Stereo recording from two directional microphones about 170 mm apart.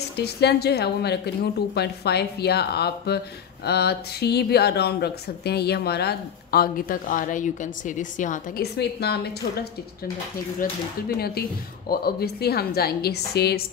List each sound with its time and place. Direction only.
0.2 s speech: 75° left (ahead or behind); by 8.6 s 50° left (ahead or behind)
8.7 s speech: 75° left (ahead or behind)
10.6 s speech: 65° left (ahead or behind)